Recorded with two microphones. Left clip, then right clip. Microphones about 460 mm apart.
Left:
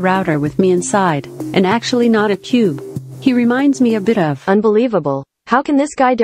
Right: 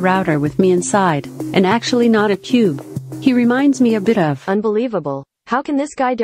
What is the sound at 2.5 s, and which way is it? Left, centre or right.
Speech, left.